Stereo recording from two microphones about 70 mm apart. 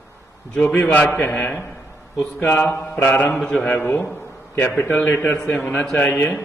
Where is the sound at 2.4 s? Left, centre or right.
Left.